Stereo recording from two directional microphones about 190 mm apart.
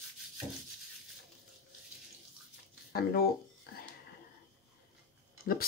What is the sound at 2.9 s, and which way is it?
Speech, 55° left (ahead or behind).